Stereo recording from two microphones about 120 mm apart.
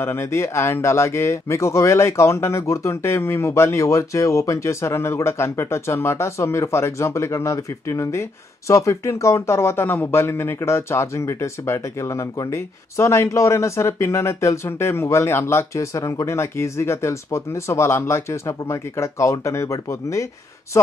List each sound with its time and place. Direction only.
0.0 s speech: 20° left (ahead or behind)